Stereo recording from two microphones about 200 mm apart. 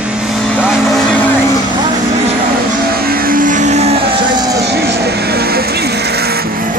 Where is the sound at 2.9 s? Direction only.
50° right (ahead or behind); by 4.0 s 35° right (ahead or behind).